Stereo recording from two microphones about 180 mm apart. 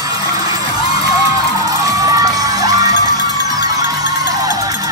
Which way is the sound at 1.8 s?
20° right (ahead or behind).